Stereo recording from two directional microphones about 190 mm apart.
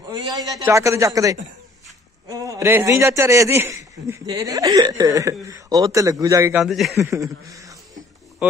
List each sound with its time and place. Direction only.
0.1 s a sound: 20° right (ahead or behind)
0.7 s a man's voice: 15° right (ahead or behind)
6.6 s a man's voice: centre (ahead or behind)
7.0 s speech: 15° right (ahead or behind)